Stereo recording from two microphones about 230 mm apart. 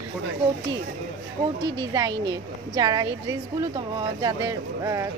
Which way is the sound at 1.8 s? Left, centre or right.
Centre.